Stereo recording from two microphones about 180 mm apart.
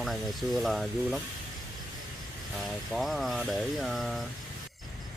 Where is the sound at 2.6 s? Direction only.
Centre (ahead or behind).